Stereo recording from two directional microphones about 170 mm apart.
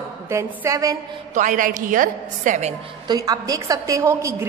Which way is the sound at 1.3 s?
50° right (ahead or behind).